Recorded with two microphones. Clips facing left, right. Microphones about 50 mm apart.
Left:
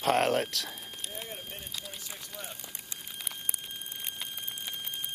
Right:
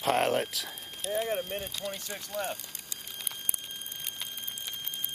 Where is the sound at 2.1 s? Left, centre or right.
Right.